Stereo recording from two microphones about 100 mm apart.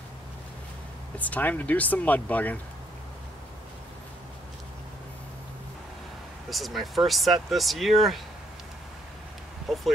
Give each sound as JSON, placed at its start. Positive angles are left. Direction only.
{"t": 1.1, "sound": "speech", "side_deg": 15}
{"t": 6.5, "sound": "speech", "side_deg": 0}
{"t": 9.7, "sound": "speech", "side_deg": 0}